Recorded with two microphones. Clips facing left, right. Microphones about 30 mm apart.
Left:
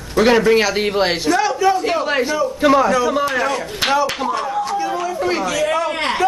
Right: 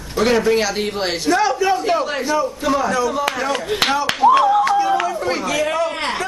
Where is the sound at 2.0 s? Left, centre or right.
Left.